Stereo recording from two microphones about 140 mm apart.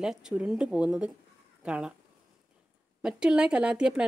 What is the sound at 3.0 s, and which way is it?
Speech, 5° right (ahead or behind).